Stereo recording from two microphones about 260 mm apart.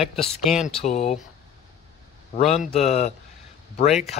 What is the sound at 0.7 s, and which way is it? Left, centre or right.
Speech, left.